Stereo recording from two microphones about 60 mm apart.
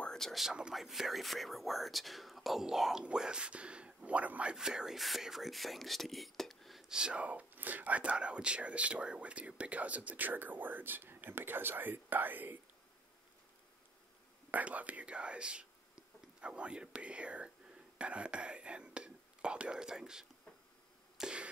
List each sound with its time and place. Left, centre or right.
0.1 s whispering: centre
0.4 s speech: centre
6.9 s speech: centre; by 12.5 s right
14.5 s speech: right
21.2 s a sound: centre